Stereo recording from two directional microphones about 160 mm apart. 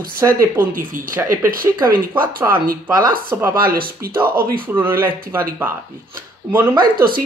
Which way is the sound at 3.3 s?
15° right (ahead or behind).